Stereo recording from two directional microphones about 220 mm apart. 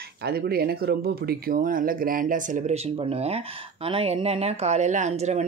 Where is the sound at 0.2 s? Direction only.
45° right (ahead or behind).